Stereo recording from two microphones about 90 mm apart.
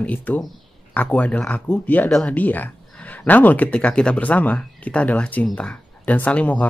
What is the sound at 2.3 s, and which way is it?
Speech, 20° left (ahead or behind).